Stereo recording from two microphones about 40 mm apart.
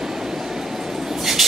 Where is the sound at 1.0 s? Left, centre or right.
Centre.